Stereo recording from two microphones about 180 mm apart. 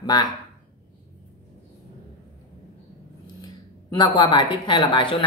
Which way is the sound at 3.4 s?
25° left (ahead or behind).